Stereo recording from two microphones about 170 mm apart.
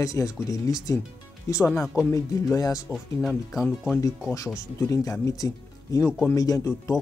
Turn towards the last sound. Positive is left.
turn(degrees=20)  # may be behind; listen again after turning